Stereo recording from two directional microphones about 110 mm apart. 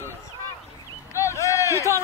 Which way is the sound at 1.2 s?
25° left (ahead or behind).